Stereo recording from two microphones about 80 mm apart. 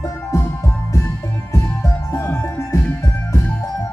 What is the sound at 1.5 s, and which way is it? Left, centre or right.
Music, left.